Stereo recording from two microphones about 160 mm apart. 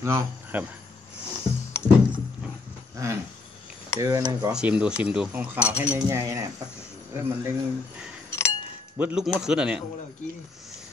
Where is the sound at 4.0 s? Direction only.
20° right (ahead or behind).